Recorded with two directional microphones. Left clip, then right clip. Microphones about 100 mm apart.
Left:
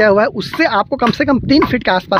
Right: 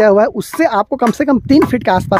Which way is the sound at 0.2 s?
40° right (ahead or behind).